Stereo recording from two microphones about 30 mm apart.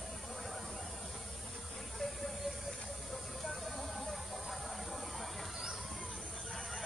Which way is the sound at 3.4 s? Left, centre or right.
Centre.